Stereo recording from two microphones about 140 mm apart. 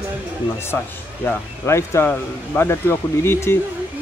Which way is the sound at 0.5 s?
15° left (ahead or behind).